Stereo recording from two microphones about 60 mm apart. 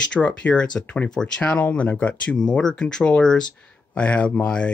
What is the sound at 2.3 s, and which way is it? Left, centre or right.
Speech, centre.